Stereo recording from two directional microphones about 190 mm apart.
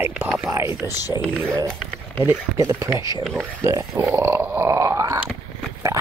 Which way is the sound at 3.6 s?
15° right (ahead or behind).